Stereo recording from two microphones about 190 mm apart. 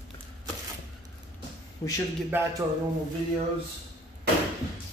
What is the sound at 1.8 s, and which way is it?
Speech, 20° left (ahead or behind).